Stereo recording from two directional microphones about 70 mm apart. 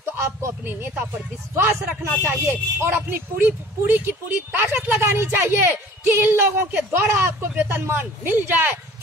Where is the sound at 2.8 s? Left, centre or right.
Right.